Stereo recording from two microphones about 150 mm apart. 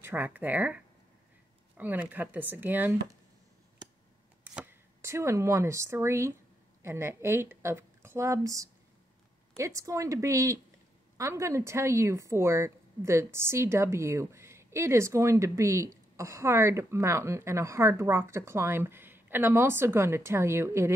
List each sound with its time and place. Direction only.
0.0 s a woman's voice: 15° right (ahead or behind)
4.6 s a woman's voice: 15° right (ahead or behind)